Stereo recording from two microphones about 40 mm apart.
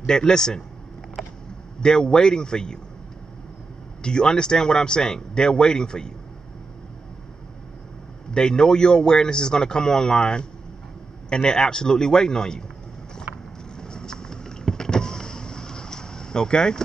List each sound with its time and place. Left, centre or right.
0.0 s a man's voice: centre
1.2 s a sound: centre
1.8 s speech: centre
4.0 s speech: centre
8.3 s a man's voice: centre
13.7 s vehicle: centre